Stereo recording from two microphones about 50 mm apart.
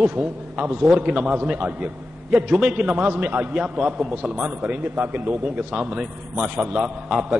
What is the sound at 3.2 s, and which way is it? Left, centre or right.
Speech, right.